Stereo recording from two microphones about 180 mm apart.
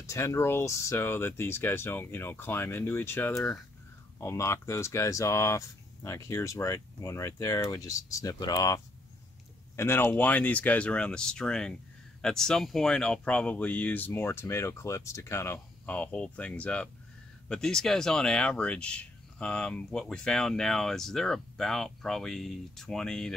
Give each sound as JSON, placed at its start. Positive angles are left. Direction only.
{"t": 0.0, "sound": "speech", "side_deg": 15}